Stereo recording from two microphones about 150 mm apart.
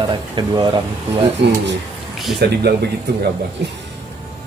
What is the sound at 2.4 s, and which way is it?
Speech, 90° right.